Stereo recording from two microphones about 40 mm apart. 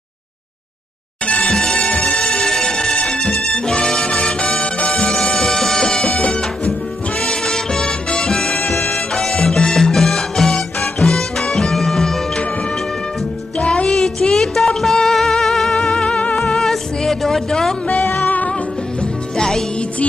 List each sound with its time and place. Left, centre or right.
1.2 s music: left
1.5 s music: centre
5.2 s music: centre
8.6 s music: left
9.1 s music: centre
13.6 s music: left
13.8 s music: centre
15.8 s music: left
16.3 s music: centre
18.2 s music: left
19.3 s music: centre